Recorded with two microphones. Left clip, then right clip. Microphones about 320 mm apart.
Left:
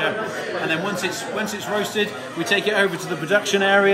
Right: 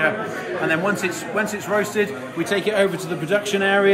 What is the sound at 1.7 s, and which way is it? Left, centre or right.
Speech, centre.